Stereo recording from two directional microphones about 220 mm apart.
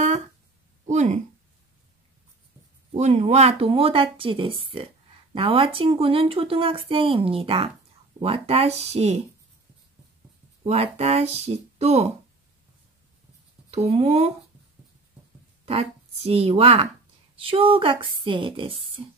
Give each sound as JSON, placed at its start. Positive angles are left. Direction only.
{"t": 0.8, "sound": "speech", "side_deg": -30}
{"t": 2.9, "sound": "speech", "side_deg": -30}
{"t": 10.6, "sound": "speech", "side_deg": -30}
{"t": 13.7, "sound": "speech", "side_deg": -30}
{"t": 15.6, "sound": "a woman's voice", "side_deg": -30}